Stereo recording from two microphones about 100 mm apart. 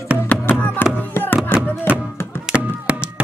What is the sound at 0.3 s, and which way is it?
Music, 20° left (ahead or behind).